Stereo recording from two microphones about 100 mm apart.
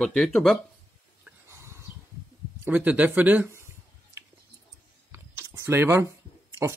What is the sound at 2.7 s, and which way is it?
Speech, 15° right (ahead or behind).